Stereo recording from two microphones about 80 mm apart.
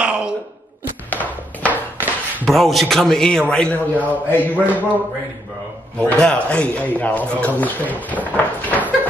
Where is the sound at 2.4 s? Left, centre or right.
Centre.